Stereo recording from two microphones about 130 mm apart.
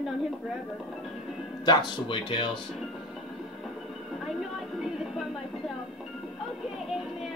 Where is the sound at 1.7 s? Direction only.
35° left (ahead or behind).